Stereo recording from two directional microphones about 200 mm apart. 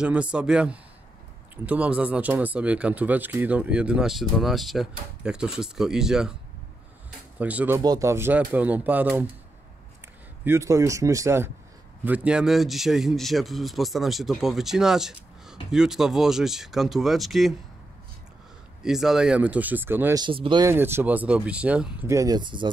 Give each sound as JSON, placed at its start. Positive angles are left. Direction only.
{"t": 0.0, "sound": "speech", "side_deg": -5}
{"t": 7.3, "sound": "speech", "side_deg": -5}
{"t": 10.4, "sound": "speech", "side_deg": -15}
{"t": 18.8, "sound": "speech", "side_deg": 0}
{"t": 20.2, "sound": "speech", "side_deg": -25}
{"t": 20.7, "sound": "speech", "side_deg": -10}
{"t": 22.1, "sound": "speech", "side_deg": -20}